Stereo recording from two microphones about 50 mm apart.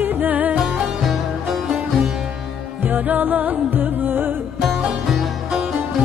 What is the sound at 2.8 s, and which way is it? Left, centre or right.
Music, right.